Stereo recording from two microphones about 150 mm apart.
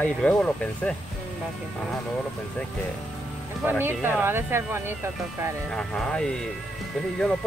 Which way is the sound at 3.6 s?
15° right (ahead or behind).